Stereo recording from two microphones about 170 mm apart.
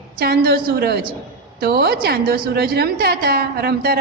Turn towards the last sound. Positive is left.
turn(degrees=-65)  # may be behind; listen again after turning